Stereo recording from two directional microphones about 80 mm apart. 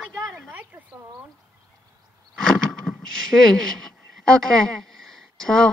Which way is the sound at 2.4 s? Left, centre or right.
Centre.